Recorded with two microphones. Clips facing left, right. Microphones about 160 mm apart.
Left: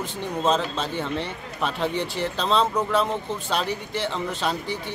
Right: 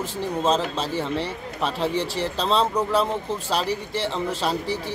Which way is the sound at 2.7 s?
Centre (ahead or behind).